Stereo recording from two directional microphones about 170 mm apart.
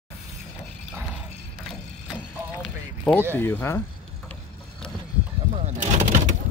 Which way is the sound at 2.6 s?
5° left (ahead or behind).